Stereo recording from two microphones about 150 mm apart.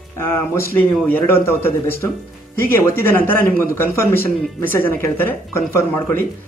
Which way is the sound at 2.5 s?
15° left (ahead or behind).